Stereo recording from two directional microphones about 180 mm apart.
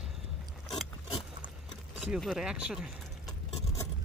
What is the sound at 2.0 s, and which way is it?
Speech, 5° right (ahead or behind).